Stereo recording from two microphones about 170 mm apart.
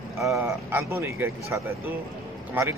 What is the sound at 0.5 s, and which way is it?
Speech, 15° right (ahead or behind).